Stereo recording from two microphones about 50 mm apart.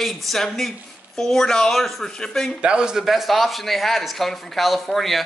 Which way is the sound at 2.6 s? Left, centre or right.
Centre.